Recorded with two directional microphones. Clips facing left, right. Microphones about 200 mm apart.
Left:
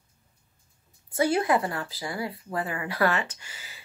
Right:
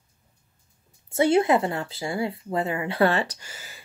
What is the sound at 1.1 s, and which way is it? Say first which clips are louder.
Speech: right 4 dB; 25° right (ahead or behind).